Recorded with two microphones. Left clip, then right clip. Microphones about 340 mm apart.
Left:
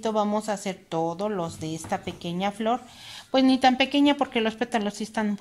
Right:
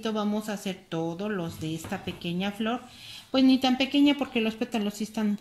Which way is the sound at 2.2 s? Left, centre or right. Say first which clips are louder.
Left 4 dB; left.